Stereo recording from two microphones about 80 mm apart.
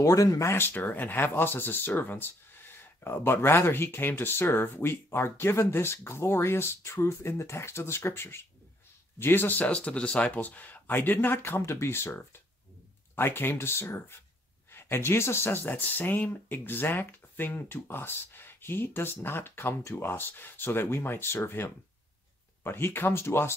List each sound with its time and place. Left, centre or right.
0.0 s speech: left